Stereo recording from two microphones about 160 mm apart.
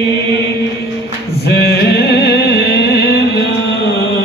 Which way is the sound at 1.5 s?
85° left.